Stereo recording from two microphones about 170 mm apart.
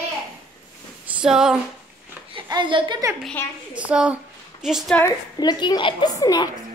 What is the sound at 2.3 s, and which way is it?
Speech, 30° right (ahead or behind).